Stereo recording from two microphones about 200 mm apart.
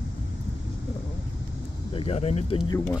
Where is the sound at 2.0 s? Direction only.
30° left (ahead or behind).